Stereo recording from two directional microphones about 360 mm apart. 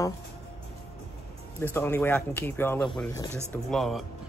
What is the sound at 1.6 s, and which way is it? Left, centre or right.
Speech, centre.